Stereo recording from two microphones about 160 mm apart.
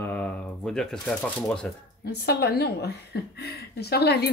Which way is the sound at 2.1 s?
90° left.